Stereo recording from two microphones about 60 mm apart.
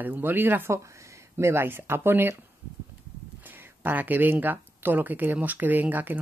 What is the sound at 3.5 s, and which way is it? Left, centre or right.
Speech, right.